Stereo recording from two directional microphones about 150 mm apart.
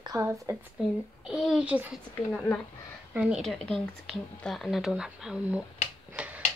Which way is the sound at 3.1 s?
5° right (ahead or behind).